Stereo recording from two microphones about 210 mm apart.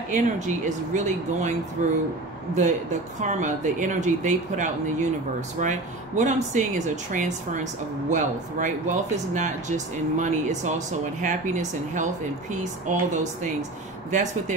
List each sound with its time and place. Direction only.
0.1 s speech: 35° right (ahead or behind)